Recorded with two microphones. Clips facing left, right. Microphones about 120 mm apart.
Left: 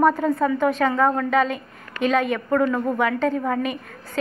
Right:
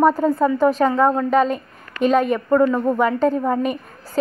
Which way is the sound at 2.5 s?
25° right (ahead or behind).